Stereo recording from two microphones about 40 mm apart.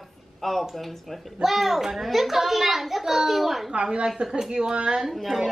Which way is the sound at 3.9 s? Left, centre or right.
Centre.